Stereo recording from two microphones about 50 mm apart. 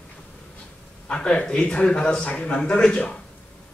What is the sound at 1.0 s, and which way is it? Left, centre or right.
Speech, left.